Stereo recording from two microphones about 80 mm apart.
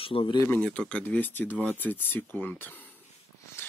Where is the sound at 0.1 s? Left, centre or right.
Left.